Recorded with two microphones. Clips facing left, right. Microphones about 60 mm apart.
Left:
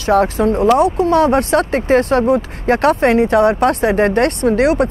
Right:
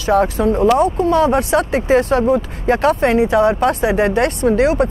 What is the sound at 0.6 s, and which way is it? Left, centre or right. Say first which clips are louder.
Speech: left 1 dB; centre.